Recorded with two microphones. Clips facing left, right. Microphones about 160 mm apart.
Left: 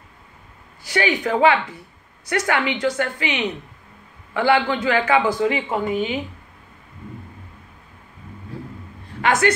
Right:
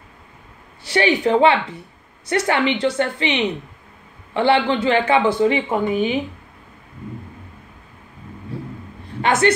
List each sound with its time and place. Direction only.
0.8 s speech: 25° right (ahead or behind)
9.2 s a man's voice: 25° right (ahead or behind)